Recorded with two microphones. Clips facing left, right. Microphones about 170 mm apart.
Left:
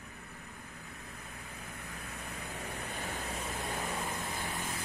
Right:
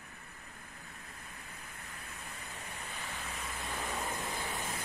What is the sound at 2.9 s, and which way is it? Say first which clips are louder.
Vehicle: left 4 dB; 60° left (ahead or behind).